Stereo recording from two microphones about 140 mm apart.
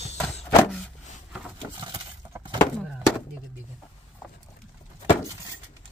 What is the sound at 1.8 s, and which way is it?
Keys jangling, 30° right (ahead or behind).